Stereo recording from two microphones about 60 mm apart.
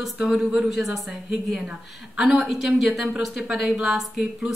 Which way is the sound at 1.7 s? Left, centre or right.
Centre.